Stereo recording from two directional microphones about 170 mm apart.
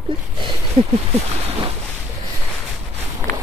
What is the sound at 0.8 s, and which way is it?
Speech, 30° right (ahead or behind).